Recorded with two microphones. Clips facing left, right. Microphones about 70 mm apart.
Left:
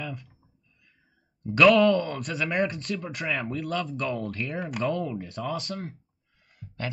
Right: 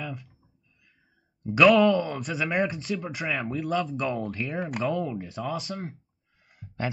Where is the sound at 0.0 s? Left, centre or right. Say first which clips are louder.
Even; centre.